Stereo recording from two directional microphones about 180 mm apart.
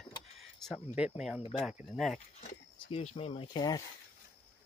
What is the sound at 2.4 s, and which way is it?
Speech, 40° left (ahead or behind).